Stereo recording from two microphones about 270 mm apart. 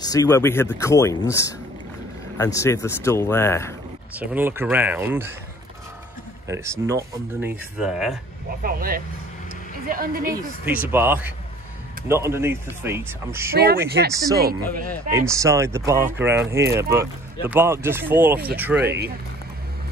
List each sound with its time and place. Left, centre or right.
0.0 s speech: centre
4.2 s speech: centre
6.4 s speech: centre
8.6 s speech: right
10.2 s speech: centre
13.5 s speech: right
15.0 s speech: centre
18.8 s speech: right